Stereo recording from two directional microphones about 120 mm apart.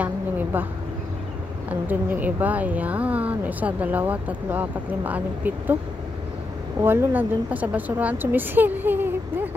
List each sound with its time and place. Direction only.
0.0 s a sound: 15° right (ahead or behind)
1.7 s speech: 15° right (ahead or behind)
6.8 s speech: 20° right (ahead or behind)